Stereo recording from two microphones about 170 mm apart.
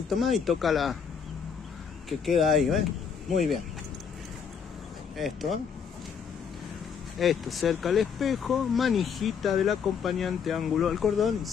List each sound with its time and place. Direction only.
0.1 s speech: centre (ahead or behind)
2.0 s speech: centre (ahead or behind)
5.1 s speech: centre (ahead or behind)
7.2 s speech: centre (ahead or behind)